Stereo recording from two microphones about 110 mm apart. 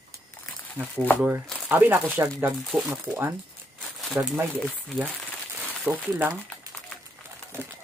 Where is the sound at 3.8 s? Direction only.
Centre (ahead or behind).